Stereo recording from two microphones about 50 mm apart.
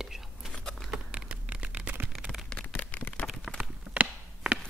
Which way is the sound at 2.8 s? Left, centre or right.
Left.